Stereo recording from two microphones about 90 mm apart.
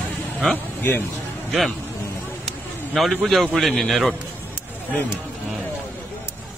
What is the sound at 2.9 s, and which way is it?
A man's voice, centre (ahead or behind).